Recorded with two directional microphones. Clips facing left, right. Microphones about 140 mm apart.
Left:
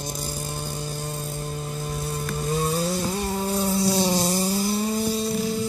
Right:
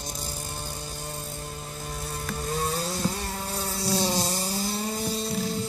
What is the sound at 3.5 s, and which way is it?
Insect, 15° left (ahead or behind).